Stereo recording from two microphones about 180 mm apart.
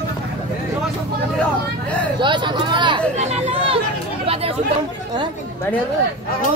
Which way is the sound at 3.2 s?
35° right (ahead or behind).